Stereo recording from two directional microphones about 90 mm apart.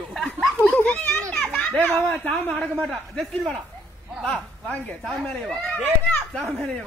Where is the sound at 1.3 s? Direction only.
5° left (ahead or behind).